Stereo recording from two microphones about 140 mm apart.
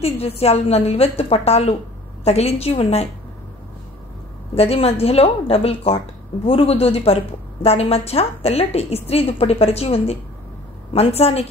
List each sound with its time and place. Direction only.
0.0 s a woman's voice: 45° left (ahead or behind)
4.6 s a woman's voice: 45° left (ahead or behind)